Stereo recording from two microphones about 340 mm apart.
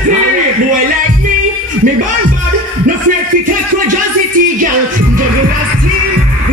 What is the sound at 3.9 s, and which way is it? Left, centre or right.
Speech, right.